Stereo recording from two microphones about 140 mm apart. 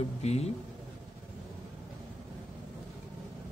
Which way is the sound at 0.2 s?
50° left (ahead or behind).